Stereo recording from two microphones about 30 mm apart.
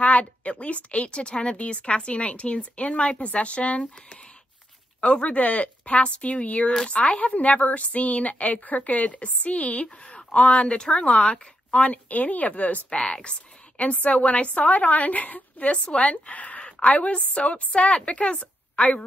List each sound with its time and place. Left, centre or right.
0.0 s a woman's voice: left
9.9 s speech: left
10.9 s speech: left
11.8 s a woman's voice: left
13.0 s a woman's voice: left
15.7 s speech: left
16.0 s a woman's voice: left